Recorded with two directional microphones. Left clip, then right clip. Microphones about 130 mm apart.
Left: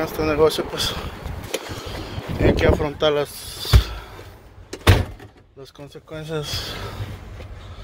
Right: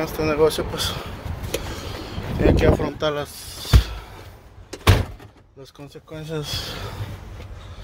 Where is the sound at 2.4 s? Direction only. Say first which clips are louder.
Even; 40° right (ahead or behind).